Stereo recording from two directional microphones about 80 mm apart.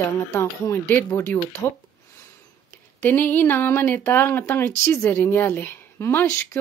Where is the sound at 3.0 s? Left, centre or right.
Left.